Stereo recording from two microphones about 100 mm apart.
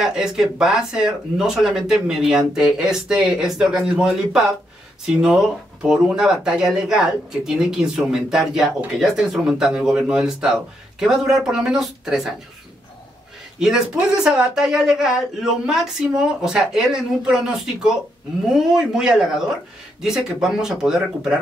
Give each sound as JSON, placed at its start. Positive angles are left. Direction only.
{"t": 0.0, "sound": "speech", "side_deg": -5}
{"t": 13.6, "sound": "speech", "side_deg": -5}